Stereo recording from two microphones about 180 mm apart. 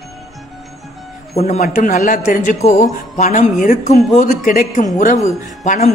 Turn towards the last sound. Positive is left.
turn(degrees=45)  # may be behind; listen again after turning